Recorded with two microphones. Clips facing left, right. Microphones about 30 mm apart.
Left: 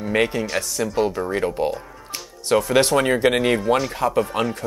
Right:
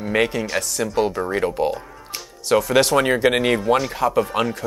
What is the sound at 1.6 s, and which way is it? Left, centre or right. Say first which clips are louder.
Music: right 1 dB; centre.